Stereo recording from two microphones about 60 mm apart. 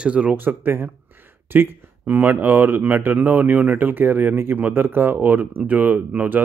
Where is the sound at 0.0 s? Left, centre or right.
Centre.